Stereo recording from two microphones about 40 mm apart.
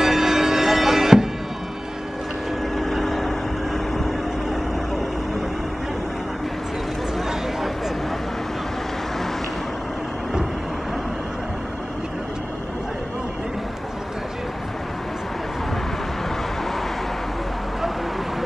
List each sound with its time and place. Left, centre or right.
0.0 s music: centre
2.8 s vehicle: centre